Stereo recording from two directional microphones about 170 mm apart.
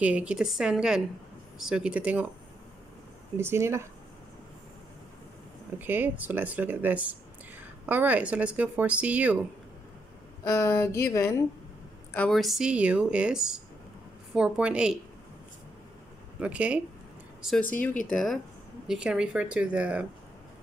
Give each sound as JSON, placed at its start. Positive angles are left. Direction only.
{"t": 0.0, "sound": "speech", "side_deg": -5}
{"t": 3.3, "sound": "speech", "side_deg": -15}
{"t": 5.8, "sound": "speech", "side_deg": -10}
{"t": 10.4, "sound": "speech", "side_deg": 15}
{"t": 12.1, "sound": "speech", "side_deg": 5}
{"t": 16.3, "sound": "speech", "side_deg": -5}
{"t": 18.1, "sound": "speech", "side_deg": 0}